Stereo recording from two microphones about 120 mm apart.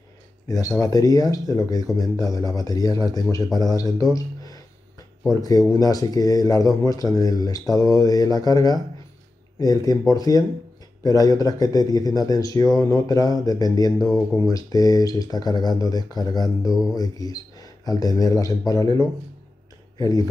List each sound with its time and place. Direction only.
0.5 s speech: 30° left (ahead or behind)